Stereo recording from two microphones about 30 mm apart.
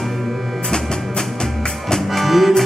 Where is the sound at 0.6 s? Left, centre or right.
Left.